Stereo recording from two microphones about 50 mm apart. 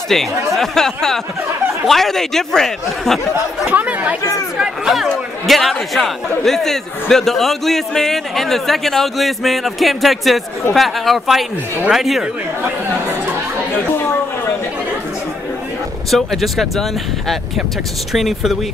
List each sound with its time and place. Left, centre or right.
0.1 s speech: centre
3.8 s speech: right
4.6 s a man's voice: centre
16.1 s a man's voice: centre
18.1 s a man's voice: centre